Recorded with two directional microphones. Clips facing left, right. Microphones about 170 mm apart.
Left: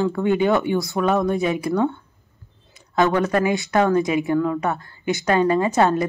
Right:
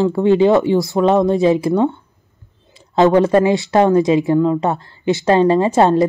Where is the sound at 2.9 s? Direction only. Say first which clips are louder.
Right 7 dB; 25° right (ahead or behind).